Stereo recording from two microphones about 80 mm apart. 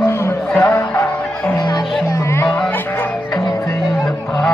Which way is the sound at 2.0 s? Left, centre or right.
Left.